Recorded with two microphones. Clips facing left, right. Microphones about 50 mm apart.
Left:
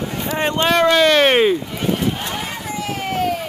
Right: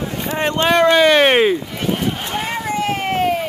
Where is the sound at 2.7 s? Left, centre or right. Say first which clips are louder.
Right 4 dB; right.